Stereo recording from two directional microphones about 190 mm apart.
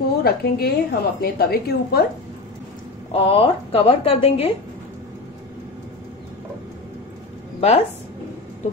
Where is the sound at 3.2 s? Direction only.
30° left (ahead or behind).